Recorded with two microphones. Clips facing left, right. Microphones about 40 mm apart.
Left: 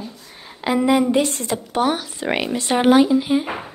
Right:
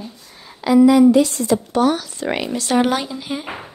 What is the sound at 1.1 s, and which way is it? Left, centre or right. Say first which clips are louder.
Speech: right 4 dB; left.